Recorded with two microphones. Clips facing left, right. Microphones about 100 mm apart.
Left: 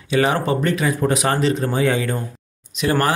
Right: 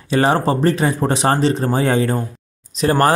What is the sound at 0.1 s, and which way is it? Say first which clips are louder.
Speech: right 2 dB; 35° right (ahead or behind).